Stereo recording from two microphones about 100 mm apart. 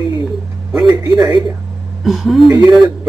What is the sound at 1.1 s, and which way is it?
Speech, 5° right (ahead or behind).